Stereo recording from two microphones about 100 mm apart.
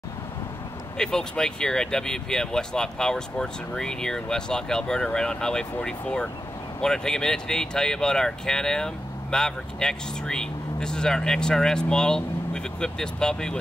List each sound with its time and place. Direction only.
0.9 s speech: 5° left (ahead or behind)